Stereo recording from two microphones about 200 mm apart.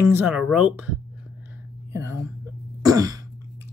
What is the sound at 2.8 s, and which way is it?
Throat clearing, 20° right (ahead or behind).